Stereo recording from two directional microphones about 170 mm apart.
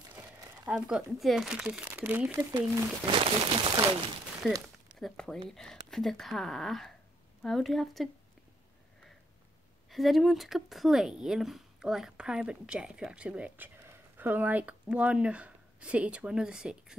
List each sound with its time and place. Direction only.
0.7 s speech: 5° right (ahead or behind)
3.1 s speech: 30° right (ahead or behind)
4.9 s speech: 5° left (ahead or behind)
9.8 s speech: centre (ahead or behind)